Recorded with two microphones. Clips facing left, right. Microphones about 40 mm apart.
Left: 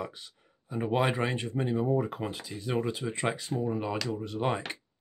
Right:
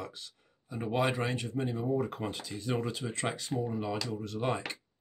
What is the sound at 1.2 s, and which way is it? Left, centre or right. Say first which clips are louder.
Speech: left 2 dB; left.